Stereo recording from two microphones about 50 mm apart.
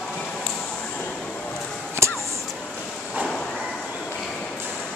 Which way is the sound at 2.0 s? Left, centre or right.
Right.